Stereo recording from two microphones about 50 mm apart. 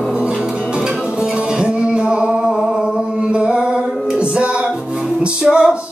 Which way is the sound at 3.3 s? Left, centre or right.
Right.